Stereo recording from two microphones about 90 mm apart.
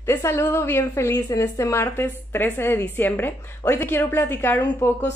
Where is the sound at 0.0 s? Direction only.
30° left (ahead or behind).